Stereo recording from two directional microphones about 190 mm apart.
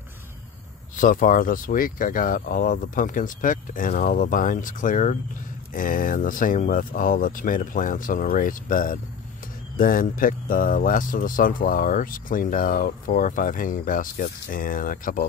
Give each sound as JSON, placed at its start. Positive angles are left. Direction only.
{"t": 0.9, "sound": "speech", "side_deg": 45}